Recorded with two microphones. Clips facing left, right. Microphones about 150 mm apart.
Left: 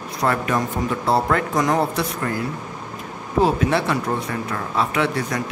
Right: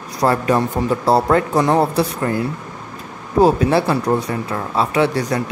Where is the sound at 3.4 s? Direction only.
35° right (ahead or behind).